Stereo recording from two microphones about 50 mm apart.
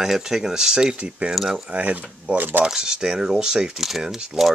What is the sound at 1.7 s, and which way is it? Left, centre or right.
Speech, right.